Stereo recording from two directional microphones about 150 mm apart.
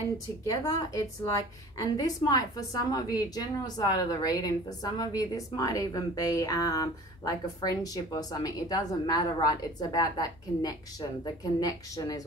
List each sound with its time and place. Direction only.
0.5 s a woman's voice: 25° left (ahead or behind)